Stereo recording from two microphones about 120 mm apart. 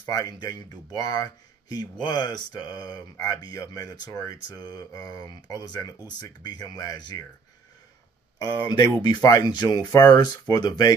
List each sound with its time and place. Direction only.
0.0 s speech: 35° left (ahead or behind)
8.6 s speech: 35° left (ahead or behind)